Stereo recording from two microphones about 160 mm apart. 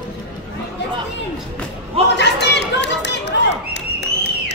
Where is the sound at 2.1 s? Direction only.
90° left.